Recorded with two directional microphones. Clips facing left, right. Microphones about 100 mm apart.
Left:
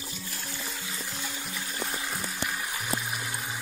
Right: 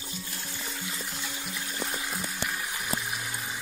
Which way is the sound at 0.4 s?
5° left (ahead or behind).